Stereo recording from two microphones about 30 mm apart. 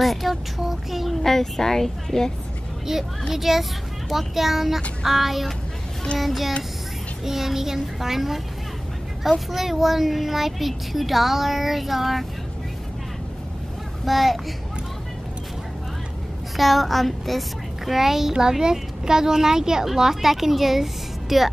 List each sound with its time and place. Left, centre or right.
0.0 s child singing: centre
1.2 s a woman's voice: centre
2.9 s a woman's voice: centre
9.5 s a child's voice: centre
14.0 s a child's voice: centre
16.5 s a woman's voice: centre